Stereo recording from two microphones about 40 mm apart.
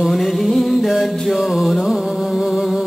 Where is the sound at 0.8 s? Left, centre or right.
Centre.